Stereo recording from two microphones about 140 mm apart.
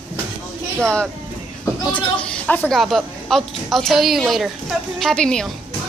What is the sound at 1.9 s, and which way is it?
A woman's voice, 10° left (ahead or behind).